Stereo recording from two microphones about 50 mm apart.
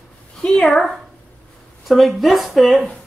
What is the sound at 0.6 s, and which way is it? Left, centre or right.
Speech, centre.